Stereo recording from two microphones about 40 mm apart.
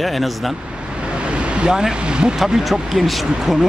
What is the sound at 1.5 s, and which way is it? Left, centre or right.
Speech, centre.